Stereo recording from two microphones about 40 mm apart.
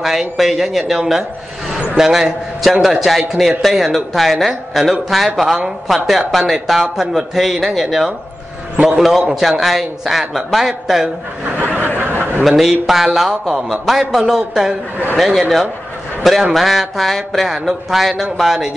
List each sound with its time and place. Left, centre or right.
0.0 s speech: centre
11.5 s a sound: right
12.4 s speech: centre
15.1 s speech: centre
16.5 s speech: centre